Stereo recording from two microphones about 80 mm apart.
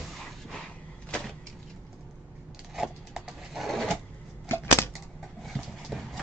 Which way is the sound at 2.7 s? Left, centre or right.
Centre.